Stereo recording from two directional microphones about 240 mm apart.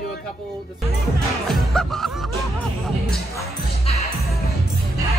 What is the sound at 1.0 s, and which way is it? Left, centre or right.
Speech, centre.